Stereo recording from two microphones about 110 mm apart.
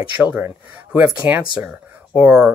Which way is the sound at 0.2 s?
20° right (ahead or behind).